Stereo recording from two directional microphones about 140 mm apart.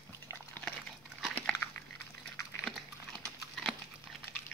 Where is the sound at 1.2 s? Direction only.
5° left (ahead or behind).